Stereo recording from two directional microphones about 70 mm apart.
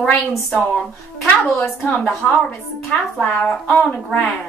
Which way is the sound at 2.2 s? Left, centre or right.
Left.